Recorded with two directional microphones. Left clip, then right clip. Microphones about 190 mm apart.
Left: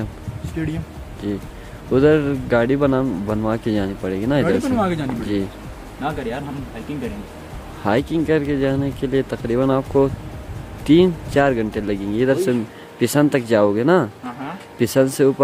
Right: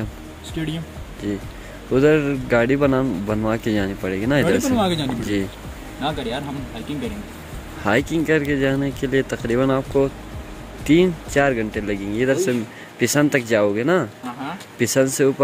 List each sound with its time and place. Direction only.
0.6 s speech: centre (ahead or behind)
2.0 s speech: 15° left (ahead or behind)
4.7 s speech: 5° right (ahead or behind)
7.8 s speech: 10° left (ahead or behind)